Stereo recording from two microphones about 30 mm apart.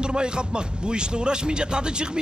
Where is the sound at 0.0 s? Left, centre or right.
Right.